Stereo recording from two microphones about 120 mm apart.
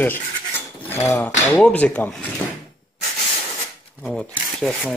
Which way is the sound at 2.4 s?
20° left (ahead or behind).